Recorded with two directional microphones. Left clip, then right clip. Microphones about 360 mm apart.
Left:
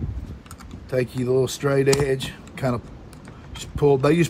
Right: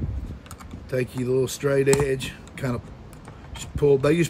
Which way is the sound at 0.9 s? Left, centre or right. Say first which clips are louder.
Left 3 dB; centre.